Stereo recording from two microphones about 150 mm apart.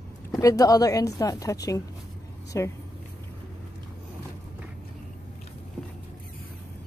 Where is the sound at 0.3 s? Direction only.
20° left (ahead or behind).